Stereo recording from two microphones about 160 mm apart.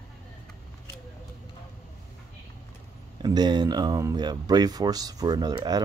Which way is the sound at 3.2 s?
25° right (ahead or behind).